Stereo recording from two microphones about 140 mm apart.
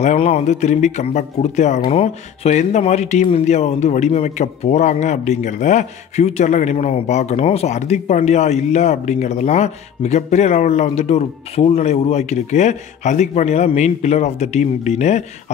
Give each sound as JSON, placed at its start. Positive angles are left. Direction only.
{"t": 0.0, "sound": "speech", "side_deg": 50}